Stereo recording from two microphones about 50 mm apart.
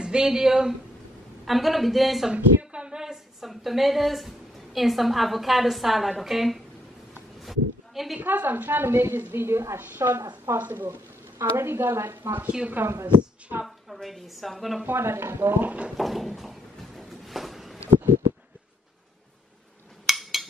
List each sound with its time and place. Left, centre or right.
0.0 s speech: centre
2.3 s a woman's voice: right; by 6.6 s centre
7.4 s a sound: centre
8.2 s a woman's voice: right
8.8 s a woman's voice: right
9.8 s a woman's voice: right
10.1 s a woman's voice: right
10.6 s a woman's voice: right
11.3 s a woman's voice: right
14.0 s speech: centre
14.9 s a woman's voice: right
15.6 s speech: right
16.0 s a sound: centre
20.1 s a sound: centre